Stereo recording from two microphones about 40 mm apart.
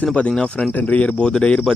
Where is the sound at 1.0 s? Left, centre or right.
Left.